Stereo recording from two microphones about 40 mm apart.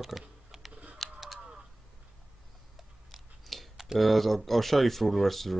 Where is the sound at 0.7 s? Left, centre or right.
Right.